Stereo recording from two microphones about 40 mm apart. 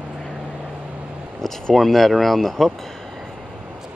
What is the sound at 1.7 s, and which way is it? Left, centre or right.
Speech, centre.